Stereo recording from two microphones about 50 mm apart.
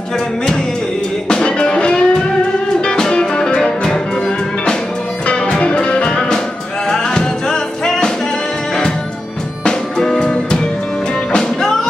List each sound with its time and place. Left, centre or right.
1.3 s music: centre
5.2 s music: left
9.7 s music: centre